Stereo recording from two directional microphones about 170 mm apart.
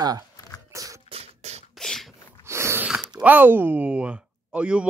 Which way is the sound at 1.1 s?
40° right (ahead or behind).